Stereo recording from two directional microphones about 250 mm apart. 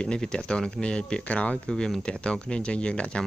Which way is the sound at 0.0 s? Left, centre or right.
Centre.